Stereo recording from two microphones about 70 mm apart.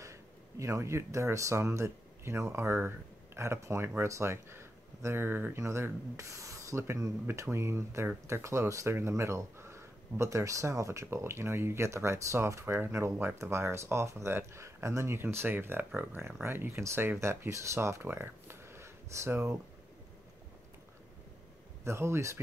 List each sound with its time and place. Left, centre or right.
0.0 s speech: right
18.0 s a sound: right
21.8 s speech: right